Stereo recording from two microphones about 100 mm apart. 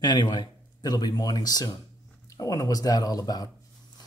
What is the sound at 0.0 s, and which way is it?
Speech, 45° left (ahead or behind).